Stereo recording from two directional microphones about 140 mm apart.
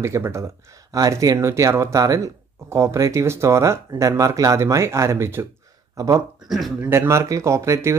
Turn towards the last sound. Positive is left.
turn(degrees=-20)  # may be behind; listen again after turning